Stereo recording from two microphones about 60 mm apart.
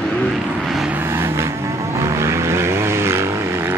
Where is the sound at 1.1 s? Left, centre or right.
Right.